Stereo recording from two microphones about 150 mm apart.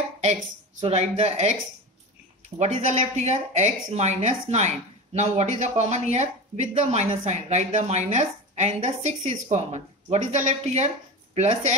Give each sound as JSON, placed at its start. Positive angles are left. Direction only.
{"t": 0.2, "sound": "speech", "side_deg": -45}
{"t": 2.6, "sound": "speech", "side_deg": -50}